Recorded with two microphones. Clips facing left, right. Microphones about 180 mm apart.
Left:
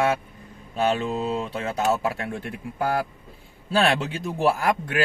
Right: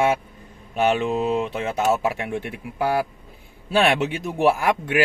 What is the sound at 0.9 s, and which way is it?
Speech, 15° right (ahead or behind).